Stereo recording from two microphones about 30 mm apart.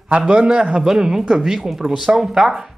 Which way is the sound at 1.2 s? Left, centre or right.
Right.